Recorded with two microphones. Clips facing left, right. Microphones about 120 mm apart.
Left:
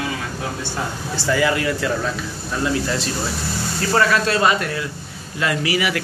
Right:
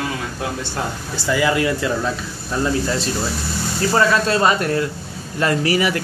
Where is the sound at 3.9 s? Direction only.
25° right (ahead or behind).